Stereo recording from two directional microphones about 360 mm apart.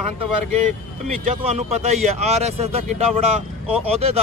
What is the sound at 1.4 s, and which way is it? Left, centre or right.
Speech, centre.